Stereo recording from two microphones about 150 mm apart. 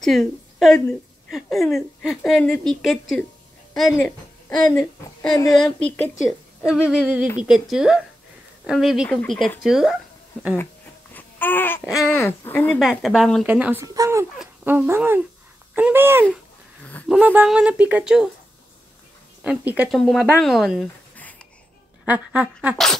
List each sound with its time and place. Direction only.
0.0 s a woman's voice: centre (ahead or behind)
5.3 s a woman's voice: 25° left (ahead or behind)
5.6 s speech: 5° left (ahead or behind)
6.2 s a woman's voice: 5° right (ahead or behind)
11.1 s babbling: 10° left (ahead or behind)
12.1 s speech: 15° left (ahead or behind)
12.8 s a woman's voice: centre (ahead or behind)
13.5 s speech: 10° right (ahead or behind)
13.8 s speech: 20° right (ahead or behind)
14.4 s speech: 10° right (ahead or behind)
19.4 s speech: 5° right (ahead or behind)
19.9 s a woman's voice: centre (ahead or behind)
22.0 s a woman's voice: 10° right (ahead or behind)